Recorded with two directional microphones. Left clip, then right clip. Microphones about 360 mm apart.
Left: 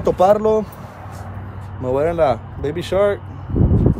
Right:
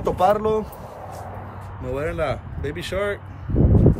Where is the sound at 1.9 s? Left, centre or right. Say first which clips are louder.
Left 9 dB; centre.